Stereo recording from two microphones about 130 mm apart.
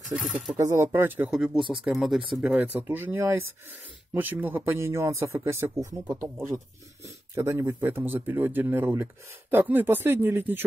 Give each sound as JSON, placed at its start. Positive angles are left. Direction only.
{"t": 0.1, "sound": "speech", "side_deg": -10}
{"t": 0.6, "sound": "speech", "side_deg": -20}
{"t": 1.3, "sound": "speech", "side_deg": -5}